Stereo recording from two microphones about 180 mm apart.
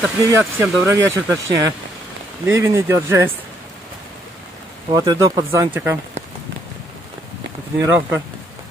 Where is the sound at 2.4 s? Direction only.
15° right (ahead or behind).